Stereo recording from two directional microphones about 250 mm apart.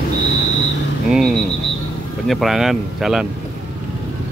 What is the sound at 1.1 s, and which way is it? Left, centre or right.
Speech, centre.